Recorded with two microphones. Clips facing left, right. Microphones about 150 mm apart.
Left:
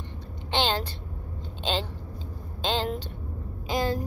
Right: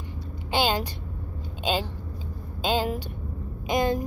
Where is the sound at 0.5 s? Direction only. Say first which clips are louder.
Right 2 dB; 10° right (ahead or behind).